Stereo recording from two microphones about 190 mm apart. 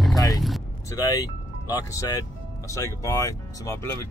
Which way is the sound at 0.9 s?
20° left (ahead or behind).